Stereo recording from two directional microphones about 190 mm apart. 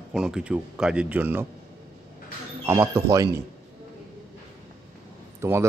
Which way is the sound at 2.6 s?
15° right (ahead or behind).